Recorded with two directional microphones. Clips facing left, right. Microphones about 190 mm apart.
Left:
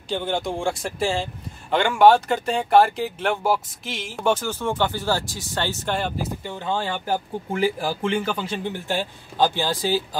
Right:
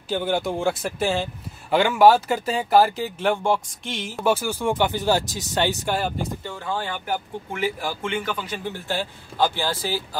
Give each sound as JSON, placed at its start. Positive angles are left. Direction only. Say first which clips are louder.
{"t": 0.1, "sound": "a man's voice", "louder": "right 2 dB", "side_deg": -5}
{"t": 5.9, "sound": "a man's voice", "louder": "right 1 dB", "side_deg": -5}
{"t": 6.4, "sound": "speech", "louder": "left 2 dB", "side_deg": 20}